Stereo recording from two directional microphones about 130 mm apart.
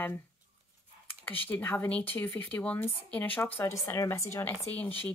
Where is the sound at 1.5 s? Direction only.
15° left (ahead or behind).